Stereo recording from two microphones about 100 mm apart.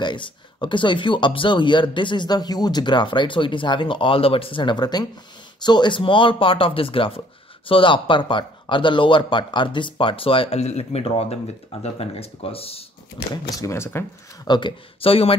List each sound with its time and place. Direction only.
0.0 s speech: 50° left (ahead or behind); by 11.3 s 80° left
11.8 s speech: 90° left
13.3 s speech: 40° left (ahead or behind)
13.7 s speech: 25° left (ahead or behind)
14.4 s speech: 50° left (ahead or behind)
15.0 s speech: 70° left (ahead or behind)